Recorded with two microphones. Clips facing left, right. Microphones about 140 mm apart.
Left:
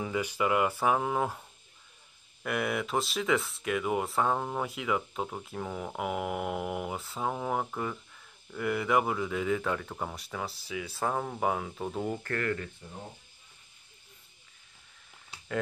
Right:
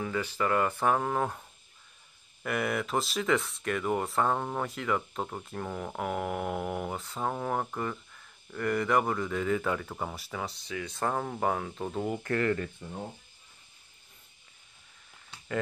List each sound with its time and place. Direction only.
0.0 s speech: 15° left (ahead or behind)
2.4 s speech: centre (ahead or behind)
12.2 s speech: 15° right (ahead or behind)
15.3 s a sound: centre (ahead or behind)